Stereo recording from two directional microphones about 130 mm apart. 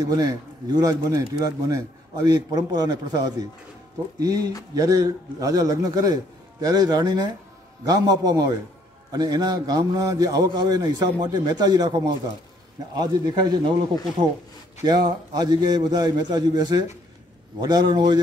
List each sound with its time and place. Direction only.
0.0 s a man's voice: 30° right (ahead or behind)
14.9 s a man's voice: 30° right (ahead or behind)